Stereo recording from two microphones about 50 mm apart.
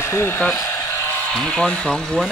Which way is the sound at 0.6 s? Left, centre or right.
Left.